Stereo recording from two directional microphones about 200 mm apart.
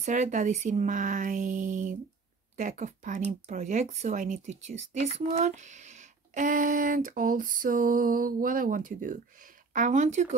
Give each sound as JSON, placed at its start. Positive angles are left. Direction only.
{"t": 0.0, "sound": "speech", "side_deg": -40}